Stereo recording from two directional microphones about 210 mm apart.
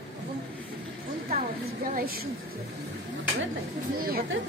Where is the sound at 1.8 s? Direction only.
45° right (ahead or behind).